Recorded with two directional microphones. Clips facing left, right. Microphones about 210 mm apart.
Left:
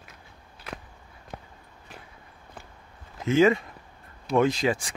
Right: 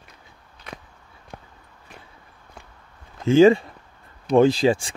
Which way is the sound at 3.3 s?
30° right (ahead or behind).